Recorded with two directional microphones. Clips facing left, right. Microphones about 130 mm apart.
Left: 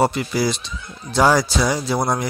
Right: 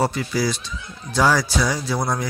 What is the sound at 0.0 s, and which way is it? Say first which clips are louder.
Speech: left 3 dB; 25° left (ahead or behind).